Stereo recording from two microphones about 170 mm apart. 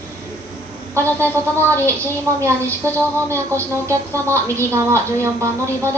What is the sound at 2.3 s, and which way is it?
A woman's voice, 15° right (ahead or behind).